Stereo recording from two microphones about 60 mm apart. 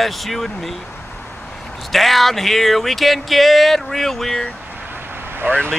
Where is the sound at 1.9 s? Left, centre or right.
Centre.